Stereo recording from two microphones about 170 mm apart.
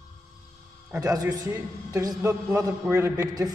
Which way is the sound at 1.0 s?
20° right (ahead or behind).